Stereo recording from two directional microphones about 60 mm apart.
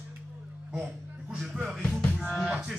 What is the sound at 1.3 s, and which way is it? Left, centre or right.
Music, centre.